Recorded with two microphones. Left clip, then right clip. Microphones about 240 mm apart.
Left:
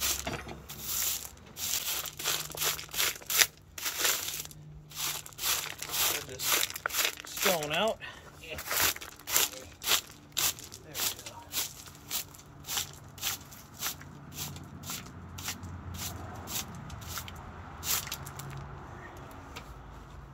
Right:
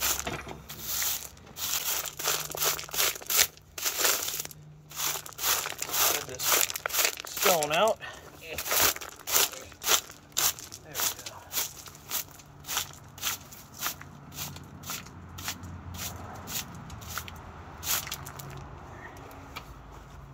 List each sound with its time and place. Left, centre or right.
0.0 s wood: centre
0.7 s crumpling: centre
6.9 s tearing: right
7.7 s speech: centre
8.5 s crunch: right; by 15.4 s centre
15.9 s a sound: centre